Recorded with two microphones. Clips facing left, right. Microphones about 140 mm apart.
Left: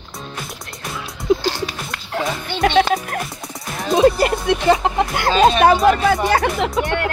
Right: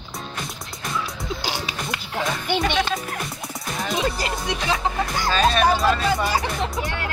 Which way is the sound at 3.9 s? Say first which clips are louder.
Left 13 dB; 55° left (ahead or behind).